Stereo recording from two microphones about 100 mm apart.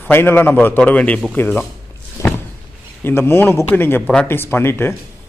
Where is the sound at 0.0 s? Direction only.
20° left (ahead or behind).